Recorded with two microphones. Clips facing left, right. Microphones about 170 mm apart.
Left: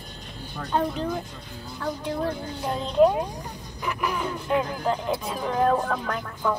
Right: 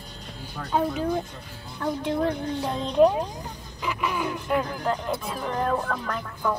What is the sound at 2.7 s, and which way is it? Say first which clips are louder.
Speech: even; 20° right (ahead or behind).